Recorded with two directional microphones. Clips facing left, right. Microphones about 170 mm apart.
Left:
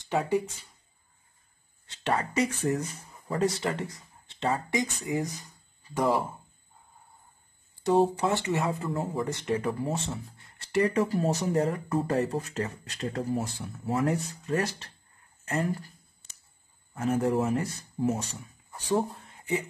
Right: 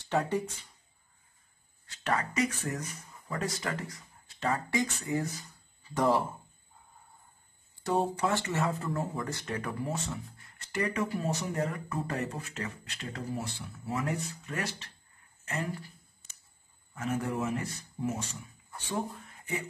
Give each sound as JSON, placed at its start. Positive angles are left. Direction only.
{"t": 0.1, "sound": "speech", "side_deg": 10}
{"t": 1.9, "sound": "speech", "side_deg": 30}
{"t": 8.2, "sound": "speech", "side_deg": 20}
{"t": 15.4, "sound": "a sound", "side_deg": 40}
{"t": 16.9, "sound": "speech", "side_deg": 35}